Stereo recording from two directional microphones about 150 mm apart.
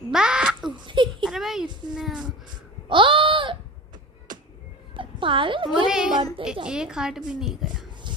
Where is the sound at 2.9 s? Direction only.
35° right (ahead or behind).